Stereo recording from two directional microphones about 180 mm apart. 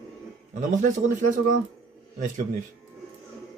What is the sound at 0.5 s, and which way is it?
Speech, 45° right (ahead or behind).